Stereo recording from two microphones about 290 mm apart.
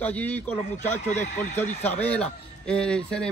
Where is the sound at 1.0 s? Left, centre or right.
Left.